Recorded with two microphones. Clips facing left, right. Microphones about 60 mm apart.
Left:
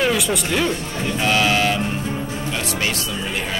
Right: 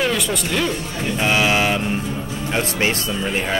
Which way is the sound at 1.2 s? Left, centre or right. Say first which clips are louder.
Even; centre.